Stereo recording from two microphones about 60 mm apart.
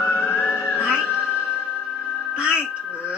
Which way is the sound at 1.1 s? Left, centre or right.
Right.